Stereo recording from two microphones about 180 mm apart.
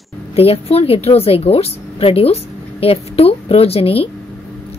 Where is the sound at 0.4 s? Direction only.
35° left (ahead or behind).